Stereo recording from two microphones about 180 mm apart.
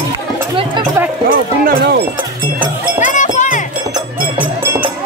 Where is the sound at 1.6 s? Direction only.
60° right (ahead or behind).